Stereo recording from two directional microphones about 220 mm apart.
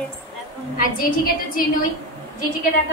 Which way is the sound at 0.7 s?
40° left (ahead or behind).